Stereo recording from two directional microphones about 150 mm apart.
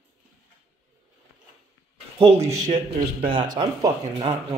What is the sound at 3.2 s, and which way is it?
Speech, 30° right (ahead or behind).